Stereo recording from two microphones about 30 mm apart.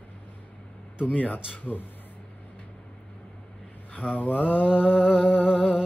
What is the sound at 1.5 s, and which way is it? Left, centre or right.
Mantra, left.